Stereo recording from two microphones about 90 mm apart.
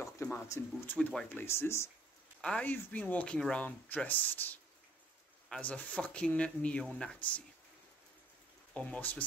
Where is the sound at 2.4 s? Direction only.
15° left (ahead or behind).